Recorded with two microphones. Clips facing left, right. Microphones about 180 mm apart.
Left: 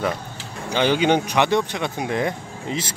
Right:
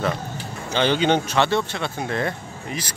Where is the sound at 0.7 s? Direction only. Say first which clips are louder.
Left 1 dB; 10° left (ahead or behind).